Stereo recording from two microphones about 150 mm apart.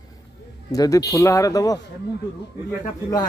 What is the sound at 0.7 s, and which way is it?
Speech, 25° left (ahead or behind).